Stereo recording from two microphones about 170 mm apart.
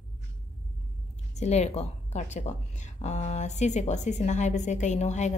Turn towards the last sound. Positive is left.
turn(degrees=45)  # may be behind; listen again after turning